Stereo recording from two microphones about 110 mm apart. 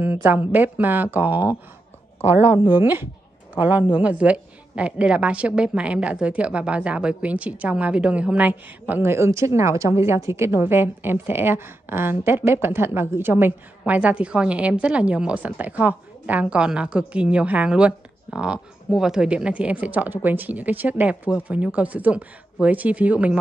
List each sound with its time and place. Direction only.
0.0 s a woman's voice: 15° right (ahead or behind)